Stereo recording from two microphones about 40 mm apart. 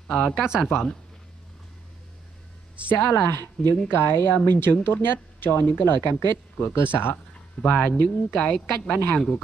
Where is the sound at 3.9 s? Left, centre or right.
Left.